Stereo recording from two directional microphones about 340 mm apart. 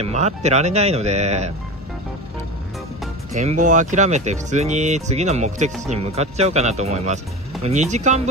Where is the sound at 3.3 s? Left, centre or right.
Centre.